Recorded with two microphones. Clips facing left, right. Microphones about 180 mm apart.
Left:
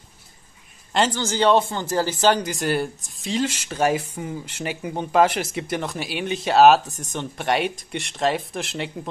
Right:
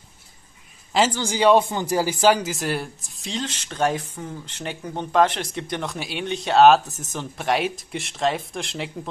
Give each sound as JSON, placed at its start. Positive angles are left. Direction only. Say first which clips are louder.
{"t": 0.9, "sound": "speech", "louder": "even", "side_deg": -5}